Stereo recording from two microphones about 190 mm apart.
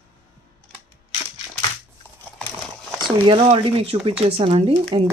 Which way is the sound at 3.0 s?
25° right (ahead or behind).